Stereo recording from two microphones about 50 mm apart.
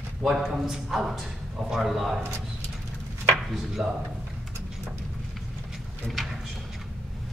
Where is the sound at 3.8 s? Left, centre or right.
Right.